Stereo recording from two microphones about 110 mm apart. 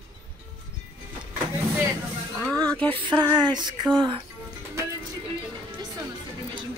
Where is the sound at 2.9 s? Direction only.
45° right (ahead or behind).